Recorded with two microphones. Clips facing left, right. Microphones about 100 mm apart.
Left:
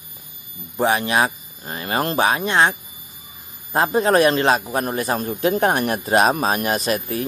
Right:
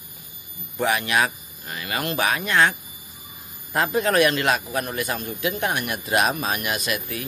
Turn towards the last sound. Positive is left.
turn(degrees=35)  # may be behind; listen again after turning